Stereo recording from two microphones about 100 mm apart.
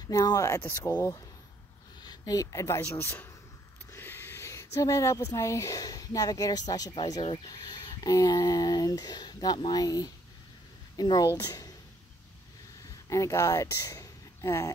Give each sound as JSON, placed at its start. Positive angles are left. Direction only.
{"t": 0.0, "sound": "a woman's voice", "side_deg": 40}
{"t": 13.1, "sound": "speech", "side_deg": 30}